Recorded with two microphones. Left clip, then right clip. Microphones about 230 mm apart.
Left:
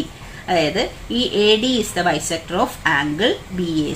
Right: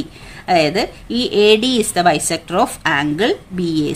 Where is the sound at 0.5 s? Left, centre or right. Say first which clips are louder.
Right 4 dB; right.